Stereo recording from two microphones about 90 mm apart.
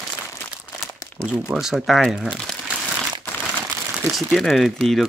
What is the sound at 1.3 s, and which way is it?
Speech, 5° right (ahead or behind).